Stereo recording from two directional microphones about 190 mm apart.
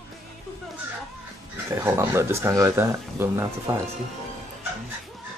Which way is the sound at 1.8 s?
15° right (ahead or behind).